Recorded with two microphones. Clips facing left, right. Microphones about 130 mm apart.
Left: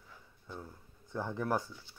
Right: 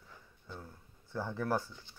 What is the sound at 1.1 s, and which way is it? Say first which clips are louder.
Speech: even; 15° left (ahead or behind).